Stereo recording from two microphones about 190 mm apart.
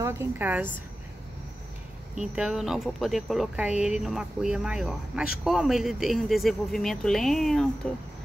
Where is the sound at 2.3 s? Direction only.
Centre (ahead or behind).